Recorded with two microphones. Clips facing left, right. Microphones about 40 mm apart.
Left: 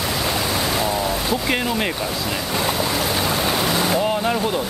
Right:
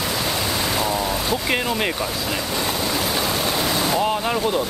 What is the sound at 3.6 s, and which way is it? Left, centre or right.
Speech, centre.